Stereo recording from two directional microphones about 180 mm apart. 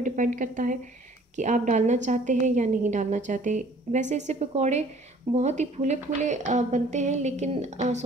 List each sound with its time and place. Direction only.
0.0 s a woman's voice: 45° right (ahead or behind)